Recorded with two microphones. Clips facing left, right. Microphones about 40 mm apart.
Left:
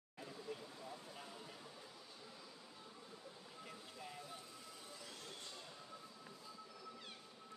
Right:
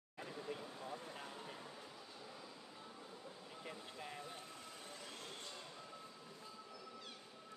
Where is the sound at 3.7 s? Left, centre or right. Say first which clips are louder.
Right 4 dB; right.